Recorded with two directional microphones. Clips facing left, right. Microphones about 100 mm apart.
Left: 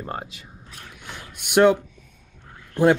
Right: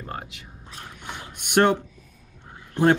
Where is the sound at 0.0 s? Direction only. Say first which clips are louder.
Left 3 dB; 30° left (ahead or behind).